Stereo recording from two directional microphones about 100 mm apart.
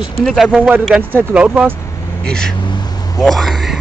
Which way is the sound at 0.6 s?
15° right (ahead or behind).